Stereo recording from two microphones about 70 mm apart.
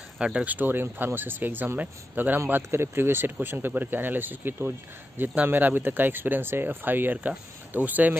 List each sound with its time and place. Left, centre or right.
0.2 s speech: centre
0.5 s speech: right